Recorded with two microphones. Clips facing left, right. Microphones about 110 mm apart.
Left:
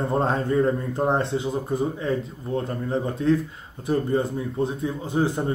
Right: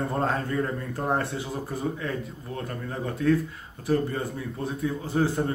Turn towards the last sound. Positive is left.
turn(degrees=20)  # may be behind; listen again after turning